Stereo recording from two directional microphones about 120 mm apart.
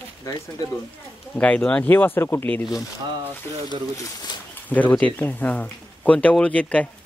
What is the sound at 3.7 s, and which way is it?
Speech, 35° left (ahead or behind).